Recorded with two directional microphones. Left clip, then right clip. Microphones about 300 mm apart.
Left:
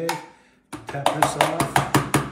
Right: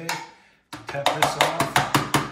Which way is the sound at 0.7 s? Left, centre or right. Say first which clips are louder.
Even; centre.